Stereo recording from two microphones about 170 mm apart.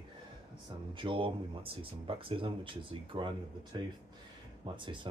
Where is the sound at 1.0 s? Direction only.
30° right (ahead or behind).